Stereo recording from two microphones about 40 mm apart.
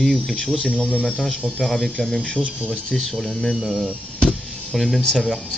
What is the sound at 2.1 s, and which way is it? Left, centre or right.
Speech, left.